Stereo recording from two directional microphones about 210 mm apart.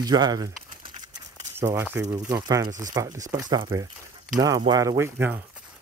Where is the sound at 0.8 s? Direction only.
20° right (ahead or behind).